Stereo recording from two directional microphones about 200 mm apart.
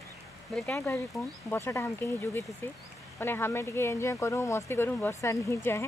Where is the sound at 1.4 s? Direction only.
10° left (ahead or behind).